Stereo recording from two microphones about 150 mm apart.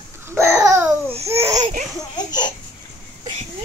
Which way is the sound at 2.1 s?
30° left (ahead or behind).